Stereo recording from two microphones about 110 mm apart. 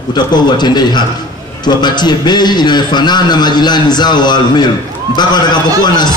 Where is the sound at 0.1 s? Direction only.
40° left (ahead or behind).